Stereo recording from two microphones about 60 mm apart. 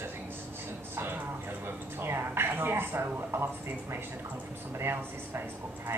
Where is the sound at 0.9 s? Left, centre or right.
Right.